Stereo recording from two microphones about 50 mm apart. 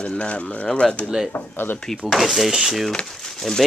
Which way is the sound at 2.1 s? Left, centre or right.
Centre.